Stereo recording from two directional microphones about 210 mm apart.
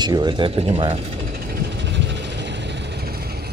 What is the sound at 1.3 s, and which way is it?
Vehicle, 45° right (ahead or behind).